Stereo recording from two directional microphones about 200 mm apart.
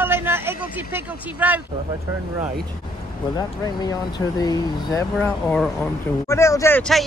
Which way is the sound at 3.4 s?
20° left (ahead or behind).